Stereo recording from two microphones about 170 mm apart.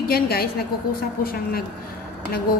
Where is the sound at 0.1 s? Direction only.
65° left (ahead or behind).